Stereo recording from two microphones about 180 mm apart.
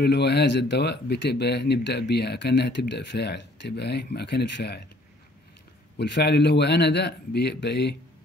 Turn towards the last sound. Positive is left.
turn(degrees=70)  # may be behind; listen again after turning